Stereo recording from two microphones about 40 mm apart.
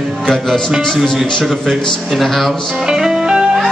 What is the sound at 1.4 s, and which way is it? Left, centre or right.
Speech, centre.